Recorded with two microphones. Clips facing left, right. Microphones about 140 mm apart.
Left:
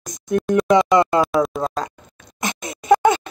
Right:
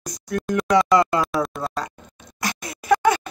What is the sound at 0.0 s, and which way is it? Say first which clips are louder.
Speech: left 6 dB; 20° left (ahead or behind).